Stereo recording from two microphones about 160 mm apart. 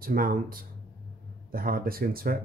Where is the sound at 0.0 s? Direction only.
65° right (ahead or behind).